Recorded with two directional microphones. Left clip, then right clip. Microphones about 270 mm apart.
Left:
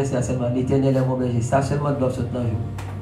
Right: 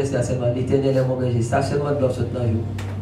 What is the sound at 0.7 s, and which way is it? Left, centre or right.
Speech, left.